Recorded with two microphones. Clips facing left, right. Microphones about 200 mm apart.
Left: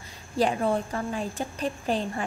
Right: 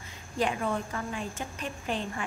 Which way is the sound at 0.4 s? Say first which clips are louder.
Left 5 dB; 35° left (ahead or behind).